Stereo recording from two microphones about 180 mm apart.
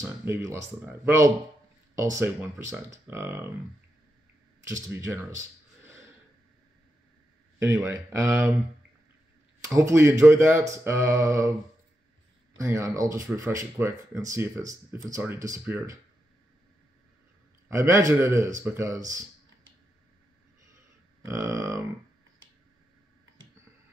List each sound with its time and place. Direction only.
0.2 s speech: 15° right (ahead or behind)
4.6 s speech: 15° right (ahead or behind)
7.5 s speech: 15° right (ahead or behind)
9.7 s speech: 15° right (ahead or behind)
12.5 s speech: 15° right (ahead or behind)
17.6 s speech: 15° right (ahead or behind)
21.3 s speech: 15° right (ahead or behind)